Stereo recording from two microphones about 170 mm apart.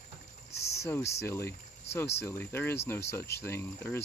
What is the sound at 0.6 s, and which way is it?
Speech, 15° left (ahead or behind).